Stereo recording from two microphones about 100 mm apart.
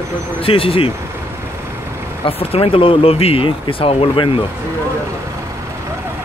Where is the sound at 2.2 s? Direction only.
70° left (ahead or behind).